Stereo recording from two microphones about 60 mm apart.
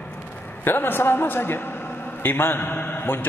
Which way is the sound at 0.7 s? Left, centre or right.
Left.